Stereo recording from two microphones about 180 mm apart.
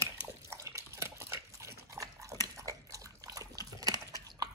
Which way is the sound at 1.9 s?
15° right (ahead or behind).